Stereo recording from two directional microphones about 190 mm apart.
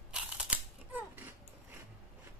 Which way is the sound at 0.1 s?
5° right (ahead or behind).